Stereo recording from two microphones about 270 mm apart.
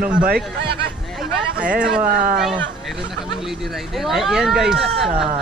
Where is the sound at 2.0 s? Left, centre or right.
Right.